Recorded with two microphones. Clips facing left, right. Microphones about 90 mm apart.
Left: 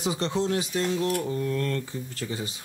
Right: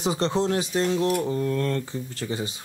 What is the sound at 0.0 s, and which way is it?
Speech, 30° right (ahead or behind).